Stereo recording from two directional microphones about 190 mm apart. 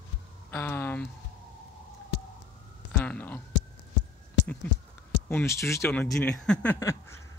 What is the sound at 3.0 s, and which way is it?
Speech, 10° left (ahead or behind).